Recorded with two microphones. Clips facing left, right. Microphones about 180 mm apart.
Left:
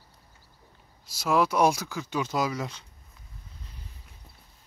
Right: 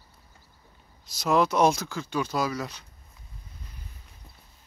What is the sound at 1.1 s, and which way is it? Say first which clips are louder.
Speech: right 1 dB; 5° left (ahead or behind).